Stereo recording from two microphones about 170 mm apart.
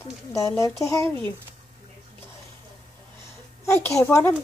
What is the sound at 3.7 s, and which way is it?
Speech, 15° left (ahead or behind).